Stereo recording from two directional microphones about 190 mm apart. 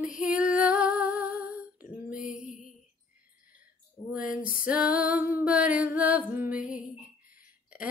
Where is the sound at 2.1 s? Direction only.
45° left (ahead or behind).